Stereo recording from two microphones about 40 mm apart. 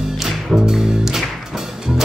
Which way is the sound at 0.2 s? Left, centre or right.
Centre.